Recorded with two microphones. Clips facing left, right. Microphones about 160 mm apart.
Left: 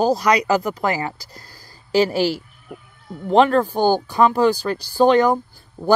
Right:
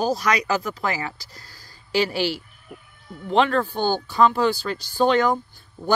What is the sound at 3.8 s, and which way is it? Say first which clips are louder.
Speech: even; 10° left (ahead or behind).